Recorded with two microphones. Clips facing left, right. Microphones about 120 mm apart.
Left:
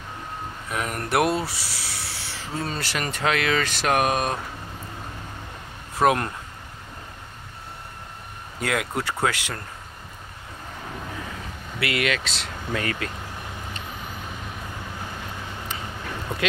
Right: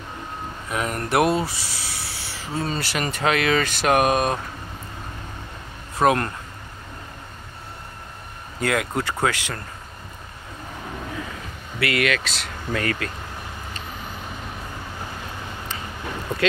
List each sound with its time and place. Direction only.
0.7 s speech: centre (ahead or behind)
5.9 s speech: 5° left (ahead or behind)
8.5 s speech: 5° left (ahead or behind)
11.8 s speech: 20° left (ahead or behind)